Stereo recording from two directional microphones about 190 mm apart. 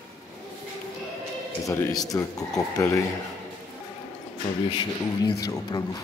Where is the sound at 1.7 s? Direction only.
20° left (ahead or behind).